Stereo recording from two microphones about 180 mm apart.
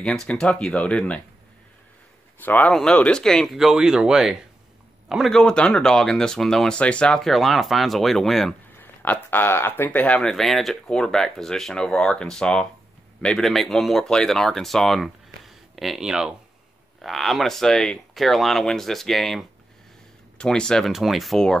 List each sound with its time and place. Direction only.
0.0 s speech: 5° left (ahead or behind)
2.4 s speech: 10° left (ahead or behind)